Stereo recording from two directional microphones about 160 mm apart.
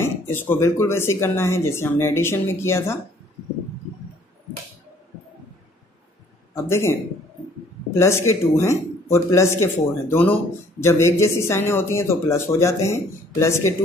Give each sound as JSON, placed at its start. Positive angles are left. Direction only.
{"t": 0.0, "sound": "a man's voice", "side_deg": 15}
{"t": 6.5, "sound": "a man's voice", "side_deg": 15}